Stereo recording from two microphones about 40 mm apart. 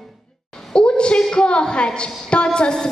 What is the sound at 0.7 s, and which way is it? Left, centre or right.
A woman's voice, left.